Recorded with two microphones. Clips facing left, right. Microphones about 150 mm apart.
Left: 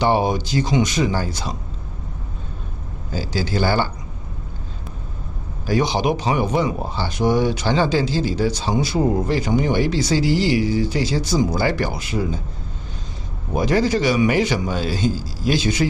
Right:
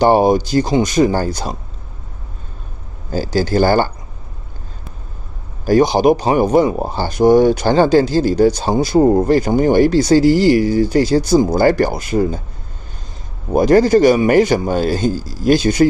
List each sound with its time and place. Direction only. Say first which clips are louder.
0.0 s speech: right 7 dB; 45° right (ahead or behind)
3.1 s speech: right 7 dB; 45° right (ahead or behind)
5.7 s speech: right 8 dB; 45° right (ahead or behind)
13.5 s speech: right 8 dB; 45° right (ahead or behind)